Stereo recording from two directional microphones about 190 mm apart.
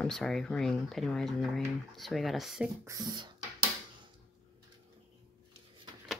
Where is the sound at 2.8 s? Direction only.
20° right (ahead or behind).